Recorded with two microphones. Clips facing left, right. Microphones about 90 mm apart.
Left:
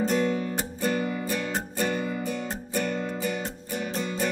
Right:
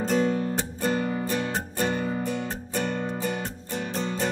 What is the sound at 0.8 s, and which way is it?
Music, 30° right (ahead or behind).